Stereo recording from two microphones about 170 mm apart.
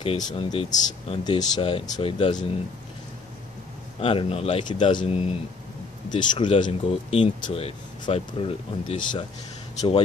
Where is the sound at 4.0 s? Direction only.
35° left (ahead or behind).